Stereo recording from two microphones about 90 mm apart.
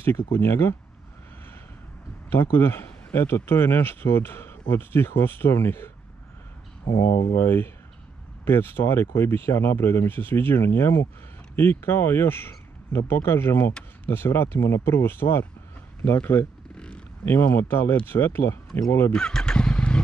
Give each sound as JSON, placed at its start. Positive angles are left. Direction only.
{"t": 0.3, "sound": "speech", "side_deg": 25}
{"t": 2.2, "sound": "speech", "side_deg": 25}
{"t": 6.9, "sound": "speech", "side_deg": 30}
{"t": 16.7, "sound": "zipper", "side_deg": 10}
{"t": 17.2, "sound": "speech", "side_deg": 25}
{"t": 19.1, "sound": "vehicle", "side_deg": 5}